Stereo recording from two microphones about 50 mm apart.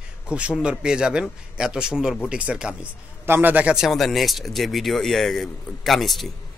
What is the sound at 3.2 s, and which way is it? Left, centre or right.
Speech, right.